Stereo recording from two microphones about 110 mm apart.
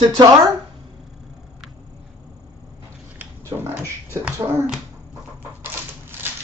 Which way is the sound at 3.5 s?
35° right (ahead or behind).